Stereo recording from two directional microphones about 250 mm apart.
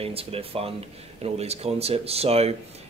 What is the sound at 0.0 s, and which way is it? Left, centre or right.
Speech, right.